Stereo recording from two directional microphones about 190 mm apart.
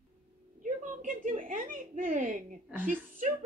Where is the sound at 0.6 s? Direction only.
45° right (ahead or behind).